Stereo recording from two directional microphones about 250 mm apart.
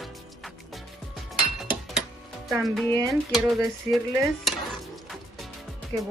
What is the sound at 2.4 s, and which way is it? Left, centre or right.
Speech, centre.